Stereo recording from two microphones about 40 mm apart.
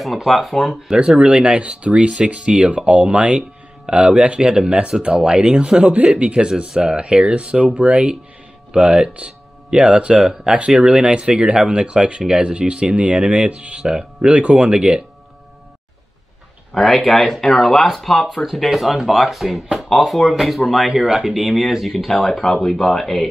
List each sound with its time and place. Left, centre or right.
0.0 s speech: centre
0.9 s speech: right
16.7 s speech: centre
19.9 s speech: centre
20.9 s speech: centre